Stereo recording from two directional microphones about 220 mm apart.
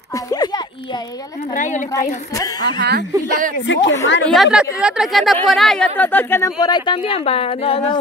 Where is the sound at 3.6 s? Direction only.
55° left (ahead or behind).